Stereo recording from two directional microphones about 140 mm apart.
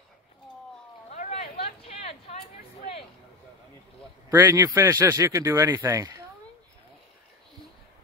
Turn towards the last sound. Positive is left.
turn(degrees=-20)  # may be behind; listen again after turning